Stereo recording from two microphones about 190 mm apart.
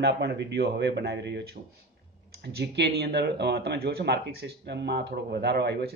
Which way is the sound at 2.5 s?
60° right (ahead or behind).